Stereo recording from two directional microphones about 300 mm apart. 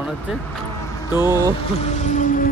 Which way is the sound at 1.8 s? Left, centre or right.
Left.